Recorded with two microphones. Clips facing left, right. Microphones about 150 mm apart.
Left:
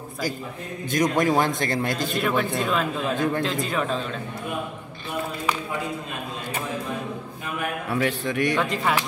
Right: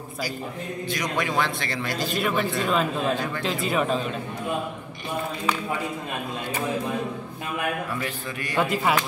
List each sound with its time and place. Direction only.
0.9 s a man's voice: 45° left (ahead or behind)
2.1 s speech: 5° right (ahead or behind)
7.9 s a man's voice: 75° left (ahead or behind)
8.5 s speech: 5° right (ahead or behind)